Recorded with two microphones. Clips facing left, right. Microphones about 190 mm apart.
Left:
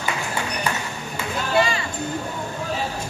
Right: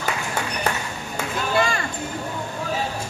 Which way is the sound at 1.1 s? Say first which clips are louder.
Left 1 dB; 50° right (ahead or behind).